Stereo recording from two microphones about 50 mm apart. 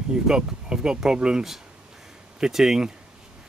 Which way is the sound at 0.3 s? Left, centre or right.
Centre.